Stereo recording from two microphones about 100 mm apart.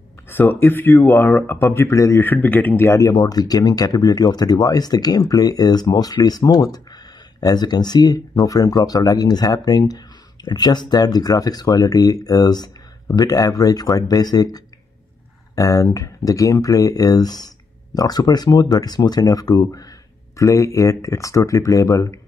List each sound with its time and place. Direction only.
0.3 s speech: 20° left (ahead or behind)
2.2 s speech: 20° left (ahead or behind)